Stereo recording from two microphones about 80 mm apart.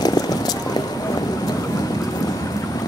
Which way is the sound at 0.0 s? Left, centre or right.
Left.